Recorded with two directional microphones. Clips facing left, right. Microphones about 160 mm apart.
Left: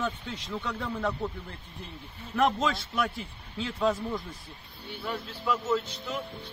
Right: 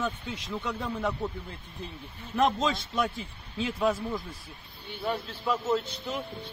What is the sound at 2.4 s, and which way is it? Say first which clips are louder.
A man's voice: even; 20° right (ahead or behind).